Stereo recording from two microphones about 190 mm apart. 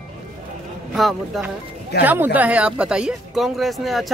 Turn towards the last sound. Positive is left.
turn(degrees=0)  # may be behind; listen again after turning